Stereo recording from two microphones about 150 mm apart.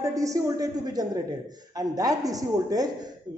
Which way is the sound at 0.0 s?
20° right (ahead or behind).